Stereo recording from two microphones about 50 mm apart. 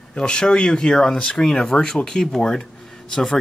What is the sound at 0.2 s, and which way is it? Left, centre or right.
Speech, centre.